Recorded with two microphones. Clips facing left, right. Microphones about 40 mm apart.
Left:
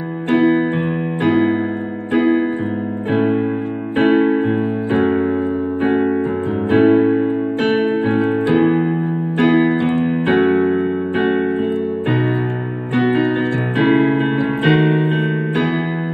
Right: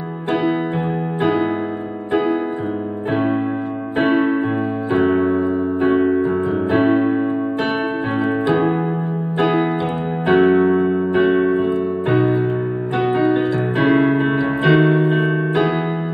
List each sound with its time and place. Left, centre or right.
0.3 s music: left
4.0 s electric piano: left
5.4 s music: left
9.4 s electric piano: left
10.2 s music: left